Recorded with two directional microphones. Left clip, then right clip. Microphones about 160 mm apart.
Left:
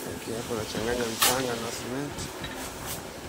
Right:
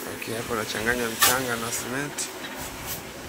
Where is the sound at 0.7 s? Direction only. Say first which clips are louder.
Right 3 dB; 10° left (ahead or behind).